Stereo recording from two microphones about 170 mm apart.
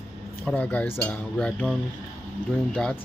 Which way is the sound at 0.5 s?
10° left (ahead or behind).